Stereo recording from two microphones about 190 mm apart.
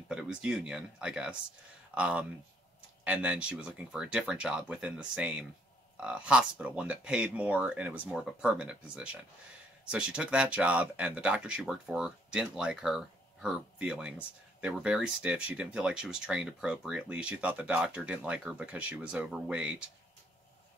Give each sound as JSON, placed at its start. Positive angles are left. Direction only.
{"t": 0.1, "sound": "speech", "side_deg": -5}